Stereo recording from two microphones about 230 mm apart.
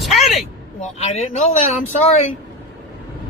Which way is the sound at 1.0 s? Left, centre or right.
Left.